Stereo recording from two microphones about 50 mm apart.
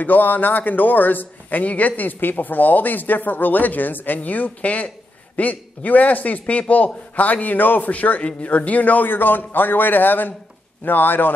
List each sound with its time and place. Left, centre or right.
0.0 s a man's voice: left